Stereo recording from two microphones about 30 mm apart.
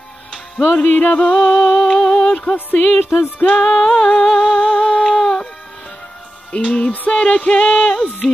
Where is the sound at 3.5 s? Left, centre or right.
Centre.